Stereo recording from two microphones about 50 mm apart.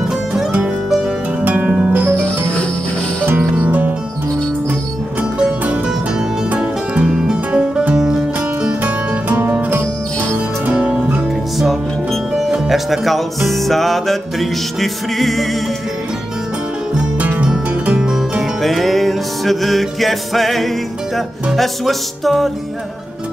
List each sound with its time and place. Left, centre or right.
1.4 s harp: right
3.3 s music: right
6.5 s music: right
7.2 s music: centre
8.8 s music: right
10.7 s music: centre
12.4 s music: centre
17.8 s music: right
18.6 s music: centre